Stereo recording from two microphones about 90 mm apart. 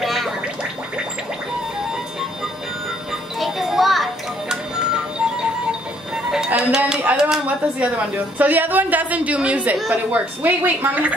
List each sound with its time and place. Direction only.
0.0 s gargling: centre (ahead or behind)
3.3 s music: centre (ahead or behind)
6.3 s music: 10° right (ahead or behind)
7.0 s a woman's voice: 15° right (ahead or behind)